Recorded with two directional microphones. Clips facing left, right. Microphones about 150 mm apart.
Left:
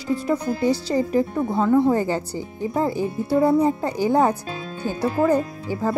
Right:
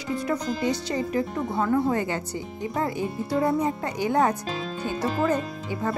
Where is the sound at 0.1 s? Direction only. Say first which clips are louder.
Left 4 dB; 30° left (ahead or behind).